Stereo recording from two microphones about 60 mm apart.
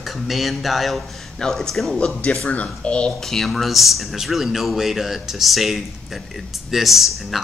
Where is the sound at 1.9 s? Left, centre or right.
Centre.